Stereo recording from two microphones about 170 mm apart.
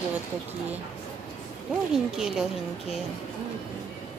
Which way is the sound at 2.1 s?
Centre (ahead or behind).